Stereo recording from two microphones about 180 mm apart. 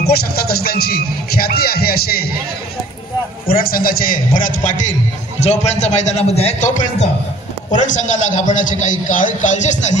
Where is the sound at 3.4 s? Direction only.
55° left (ahead or behind).